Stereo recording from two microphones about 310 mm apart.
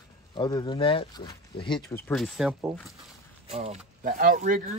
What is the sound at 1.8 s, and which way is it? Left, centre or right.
Speech, centre.